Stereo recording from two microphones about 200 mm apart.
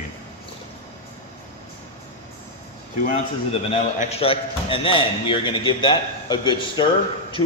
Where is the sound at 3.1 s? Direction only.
30° left (ahead or behind).